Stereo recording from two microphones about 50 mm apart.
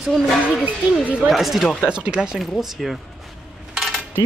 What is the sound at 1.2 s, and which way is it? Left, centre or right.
Speech, centre.